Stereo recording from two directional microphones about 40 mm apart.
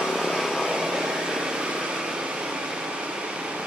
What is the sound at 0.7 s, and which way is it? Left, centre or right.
Vehicle, centre.